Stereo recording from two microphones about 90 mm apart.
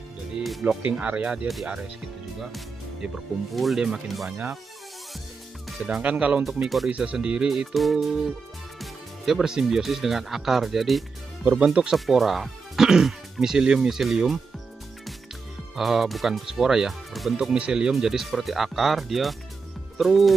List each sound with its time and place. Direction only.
0.4 s music: centre (ahead or behind)
0.8 s speech: 15° right (ahead or behind)
2.4 s music: 5° right (ahead or behind)
3.5 s speech: centre (ahead or behind)
5.9 s speech: 10° right (ahead or behind)
6.4 s speech: centre (ahead or behind)
6.9 s speech: 15° right (ahead or behind)
15.7 s speech: centre (ahead or behind)